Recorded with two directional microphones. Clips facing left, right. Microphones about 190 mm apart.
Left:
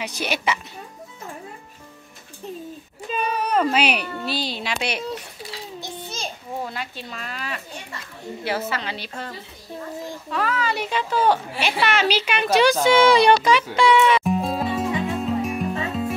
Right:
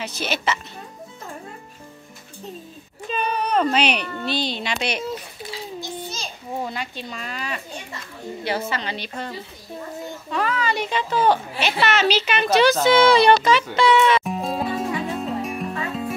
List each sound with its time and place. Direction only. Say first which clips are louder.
0.0 s a woman's voice: even; 15° left (ahead or behind)
3.1 s speech: even; 5° left (ahead or behind)
5.8 s a sound: right 2 dB; 55° left (ahead or behind)
6.6 s speech: right 3 dB; centre (ahead or behind)
10.3 s a woman's voice: right 1 dB; 5° left (ahead or behind)
15.0 s music: left 2 dB; centre (ahead or behind)